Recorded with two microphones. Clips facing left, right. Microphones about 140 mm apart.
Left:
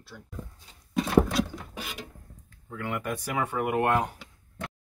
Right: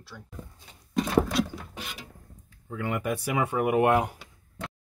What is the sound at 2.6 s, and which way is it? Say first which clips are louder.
Speech: right 3 dB; 10° right (ahead or behind).